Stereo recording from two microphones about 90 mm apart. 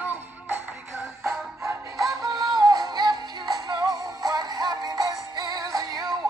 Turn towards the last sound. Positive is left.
turn(degrees=-45)  # may be behind; listen again after turning